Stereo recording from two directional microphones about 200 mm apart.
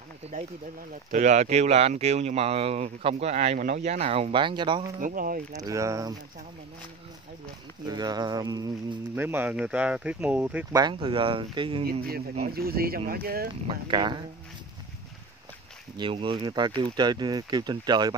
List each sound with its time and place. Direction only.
1.1 s speech: 35° right (ahead or behind)
5.0 s speech: 45° right (ahead or behind)
5.5 s speech: 15° right (ahead or behind)
7.8 s speech: 20° right (ahead or behind)
10.8 s speech: 25° right (ahead or behind)
12.5 s speech: 50° right (ahead or behind)
13.7 s speech: 25° right (ahead or behind)
16.0 s speech: 25° right (ahead or behind)